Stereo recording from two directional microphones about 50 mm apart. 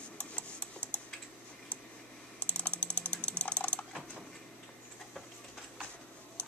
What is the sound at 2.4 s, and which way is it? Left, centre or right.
Ratchet, left.